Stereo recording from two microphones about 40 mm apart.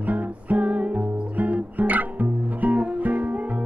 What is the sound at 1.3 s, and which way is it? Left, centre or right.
Music, right.